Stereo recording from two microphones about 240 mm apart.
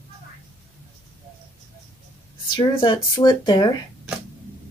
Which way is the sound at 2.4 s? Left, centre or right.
Centre.